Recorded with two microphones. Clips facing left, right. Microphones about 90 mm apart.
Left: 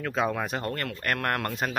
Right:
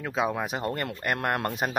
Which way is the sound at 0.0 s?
10° right (ahead or behind).